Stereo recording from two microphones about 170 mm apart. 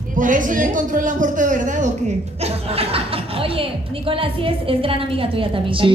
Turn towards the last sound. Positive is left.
turn(degrees=-30)  # may be behind; listen again after turning